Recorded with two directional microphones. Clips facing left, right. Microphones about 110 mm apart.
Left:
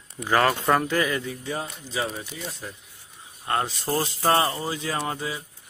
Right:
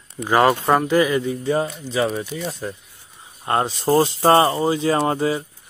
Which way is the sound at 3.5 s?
30° right (ahead or behind).